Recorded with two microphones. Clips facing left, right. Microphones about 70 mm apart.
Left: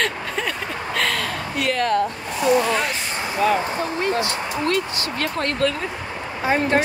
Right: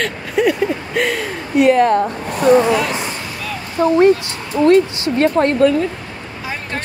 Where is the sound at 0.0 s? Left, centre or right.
Centre.